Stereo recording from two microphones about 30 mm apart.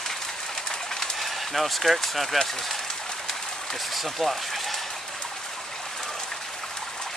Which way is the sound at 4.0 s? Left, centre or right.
Centre.